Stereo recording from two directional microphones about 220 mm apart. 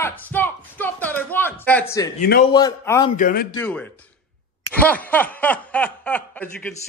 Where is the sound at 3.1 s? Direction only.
40° left (ahead or behind).